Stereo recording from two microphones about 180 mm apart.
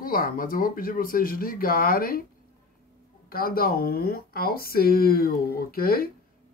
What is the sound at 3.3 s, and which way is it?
Speech, 55° left (ahead or behind).